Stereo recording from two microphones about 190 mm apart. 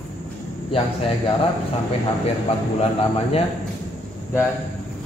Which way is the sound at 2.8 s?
30° left (ahead or behind).